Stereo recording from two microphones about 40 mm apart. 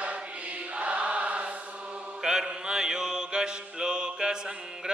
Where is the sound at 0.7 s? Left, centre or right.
Right.